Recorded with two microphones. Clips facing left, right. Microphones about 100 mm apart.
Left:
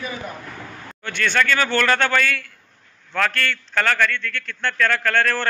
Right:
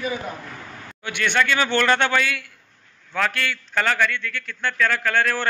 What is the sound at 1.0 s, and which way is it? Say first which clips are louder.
A man's voice: left 1 dB; 15° right (ahead or behind).